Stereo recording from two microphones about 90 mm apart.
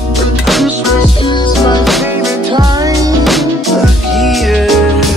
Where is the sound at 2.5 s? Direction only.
50° right (ahead or behind).